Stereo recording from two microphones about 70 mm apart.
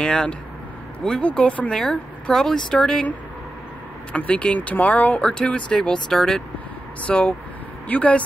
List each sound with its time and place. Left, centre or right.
0.0 s speech: centre
4.1 s speech: left